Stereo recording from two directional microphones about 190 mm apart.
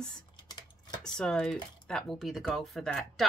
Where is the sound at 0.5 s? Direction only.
20° left (ahead or behind).